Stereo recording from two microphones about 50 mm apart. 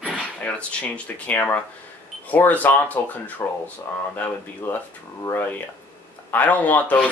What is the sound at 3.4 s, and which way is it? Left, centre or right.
Speech, left.